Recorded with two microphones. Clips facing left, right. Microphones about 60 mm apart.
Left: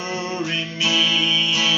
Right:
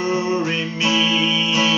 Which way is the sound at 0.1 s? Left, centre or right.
Right.